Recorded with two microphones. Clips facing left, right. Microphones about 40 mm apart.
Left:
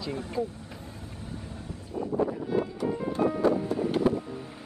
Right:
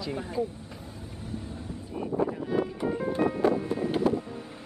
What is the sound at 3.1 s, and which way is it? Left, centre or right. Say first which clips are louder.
Music: even; right.